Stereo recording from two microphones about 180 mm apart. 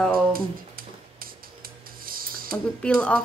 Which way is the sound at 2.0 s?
55° right (ahead or behind).